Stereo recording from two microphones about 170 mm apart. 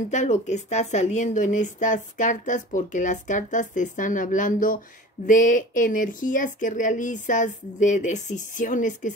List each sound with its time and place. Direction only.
0.1 s speech: 45° left (ahead or behind)